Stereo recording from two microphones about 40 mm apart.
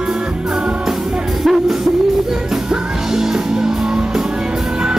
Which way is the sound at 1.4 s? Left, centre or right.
Centre.